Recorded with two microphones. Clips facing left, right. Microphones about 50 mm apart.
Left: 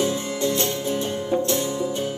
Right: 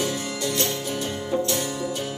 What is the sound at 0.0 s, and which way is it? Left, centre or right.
Music, left.